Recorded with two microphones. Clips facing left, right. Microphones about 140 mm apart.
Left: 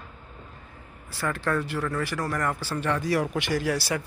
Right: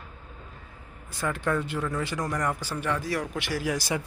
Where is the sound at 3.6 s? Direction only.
15° right (ahead or behind).